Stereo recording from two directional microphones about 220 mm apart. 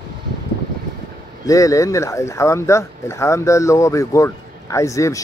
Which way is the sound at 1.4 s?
15° left (ahead or behind).